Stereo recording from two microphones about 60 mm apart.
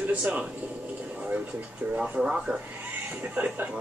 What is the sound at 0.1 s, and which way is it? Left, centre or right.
Speech, right.